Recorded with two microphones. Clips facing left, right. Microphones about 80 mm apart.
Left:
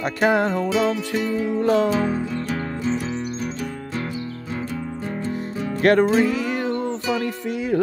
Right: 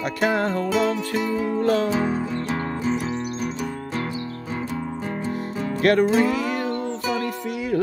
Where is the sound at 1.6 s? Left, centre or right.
Centre.